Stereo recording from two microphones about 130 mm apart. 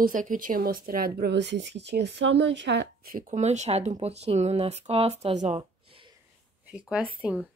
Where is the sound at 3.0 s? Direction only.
85° right; by 5.6 s 60° right (ahead or behind).